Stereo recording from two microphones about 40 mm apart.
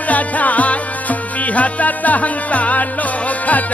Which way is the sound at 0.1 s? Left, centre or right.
Left.